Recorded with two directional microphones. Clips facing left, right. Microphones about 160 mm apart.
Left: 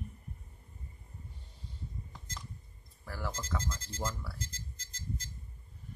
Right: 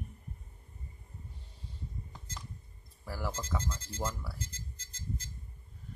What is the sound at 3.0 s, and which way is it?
Speech, 10° right (ahead or behind).